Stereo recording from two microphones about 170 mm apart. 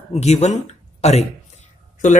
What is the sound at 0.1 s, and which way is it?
Speech, 40° left (ahead or behind).